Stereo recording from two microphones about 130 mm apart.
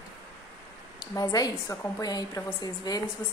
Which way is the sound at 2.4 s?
20° left (ahead or behind).